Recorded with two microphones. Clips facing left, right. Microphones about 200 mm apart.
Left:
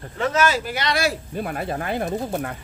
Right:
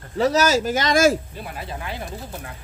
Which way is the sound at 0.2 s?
40° right (ahead or behind).